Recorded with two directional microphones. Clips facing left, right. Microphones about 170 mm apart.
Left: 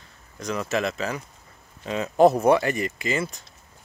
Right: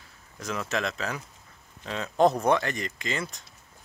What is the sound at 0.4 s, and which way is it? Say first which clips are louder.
Speech: left 4 dB; centre (ahead or behind).